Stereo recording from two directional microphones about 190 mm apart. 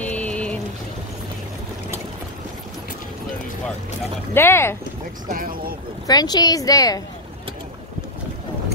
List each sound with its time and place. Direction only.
0.0 s a sound: 5° left (ahead or behind)
4.3 s speech: 10° left (ahead or behind)
5.3 s speech: 50° right (ahead or behind)
6.0 s a woman's voice: 20° left (ahead or behind)